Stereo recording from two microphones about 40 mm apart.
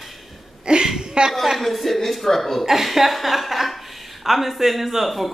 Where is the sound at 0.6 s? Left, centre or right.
Right.